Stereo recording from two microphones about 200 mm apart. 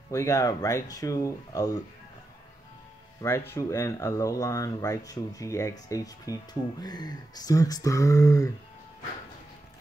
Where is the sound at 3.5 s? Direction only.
15° left (ahead or behind).